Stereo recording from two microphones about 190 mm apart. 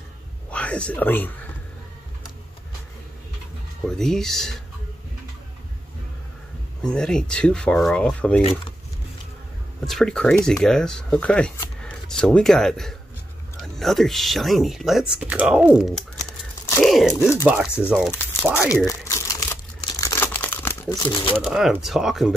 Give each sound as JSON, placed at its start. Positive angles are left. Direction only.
{"t": 0.5, "sound": "speech", "side_deg": 5}
{"t": 3.8, "sound": "speech", "side_deg": 5}
{"t": 6.8, "sound": "speech", "side_deg": 5}
{"t": 9.8, "sound": "speech", "side_deg": 0}
{"t": 18.9, "sound": "crumpling", "side_deg": 15}
{"t": 21.4, "sound": "speech", "side_deg": 0}